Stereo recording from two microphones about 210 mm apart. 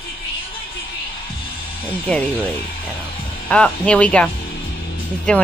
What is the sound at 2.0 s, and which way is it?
Speech, 5° left (ahead or behind).